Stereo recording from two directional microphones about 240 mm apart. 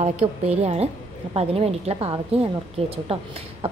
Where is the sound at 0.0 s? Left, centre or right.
Right.